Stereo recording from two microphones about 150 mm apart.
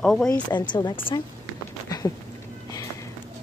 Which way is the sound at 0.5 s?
30° left (ahead or behind).